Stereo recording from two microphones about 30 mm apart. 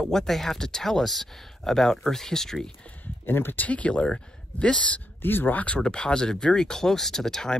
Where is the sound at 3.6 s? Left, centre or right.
Left.